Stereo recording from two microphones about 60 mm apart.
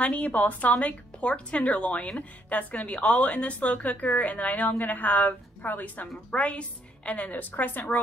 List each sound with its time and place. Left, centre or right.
0.0 s a woman's voice: centre